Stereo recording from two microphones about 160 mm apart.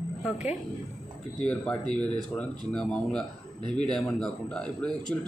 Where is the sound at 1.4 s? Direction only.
10° left (ahead or behind).